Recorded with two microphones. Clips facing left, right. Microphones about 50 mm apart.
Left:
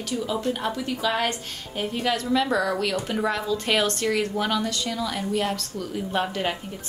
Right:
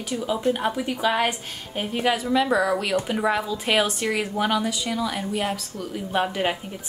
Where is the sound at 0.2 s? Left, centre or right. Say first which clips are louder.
Right 4 dB; centre.